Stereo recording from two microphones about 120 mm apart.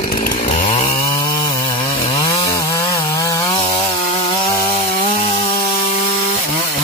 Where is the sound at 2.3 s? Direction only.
30° left (ahead or behind).